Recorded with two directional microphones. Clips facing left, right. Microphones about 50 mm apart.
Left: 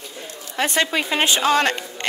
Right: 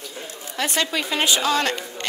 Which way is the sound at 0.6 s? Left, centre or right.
Left.